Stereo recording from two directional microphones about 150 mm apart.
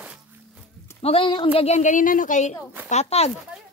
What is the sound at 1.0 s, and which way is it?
A woman's voice, 35° left (ahead or behind).